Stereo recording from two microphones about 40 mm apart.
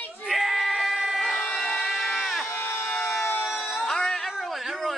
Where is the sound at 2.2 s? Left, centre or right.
Centre.